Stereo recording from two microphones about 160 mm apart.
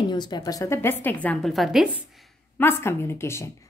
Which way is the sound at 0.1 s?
25° left (ahead or behind).